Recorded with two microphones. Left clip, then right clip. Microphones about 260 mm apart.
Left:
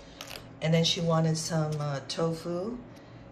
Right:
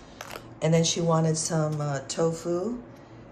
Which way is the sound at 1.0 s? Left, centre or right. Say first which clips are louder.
Right 3 dB; centre.